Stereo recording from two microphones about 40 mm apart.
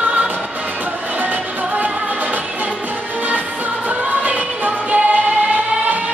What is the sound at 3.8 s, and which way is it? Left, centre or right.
Music, right.